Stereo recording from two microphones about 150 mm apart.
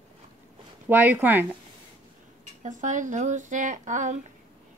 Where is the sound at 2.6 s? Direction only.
55° right (ahead or behind).